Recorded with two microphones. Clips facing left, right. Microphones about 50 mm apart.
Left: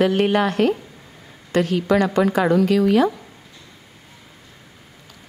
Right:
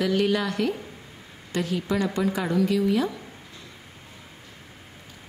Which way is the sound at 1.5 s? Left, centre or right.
Left.